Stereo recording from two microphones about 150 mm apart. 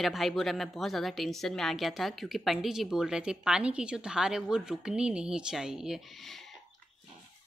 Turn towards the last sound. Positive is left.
turn(degrees=0)  # may be behind; listen again after turning